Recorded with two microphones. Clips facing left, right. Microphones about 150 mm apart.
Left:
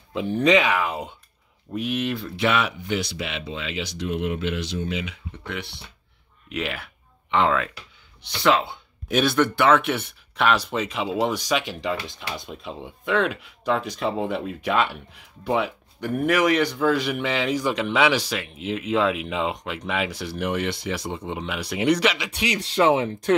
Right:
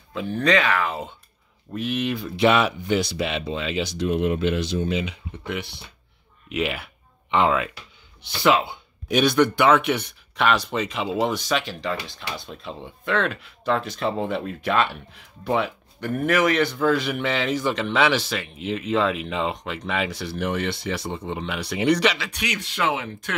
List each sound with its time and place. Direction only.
0.1 s a man's voice: 20° left (ahead or behind); by 2.3 s centre (ahead or behind)
2.3 s speech: 25° right (ahead or behind)
5.4 s speech: 10° right (ahead or behind)
8.6 s speech: centre (ahead or behind)
11.4 s a man's voice: 15° left (ahead or behind)
22.3 s speech: 30° left (ahead or behind)